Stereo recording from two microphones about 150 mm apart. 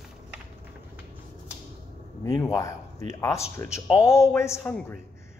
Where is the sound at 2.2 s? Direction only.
20° left (ahead or behind).